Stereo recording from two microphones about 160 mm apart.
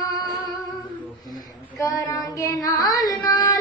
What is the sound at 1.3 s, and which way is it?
Child singing, 20° left (ahead or behind).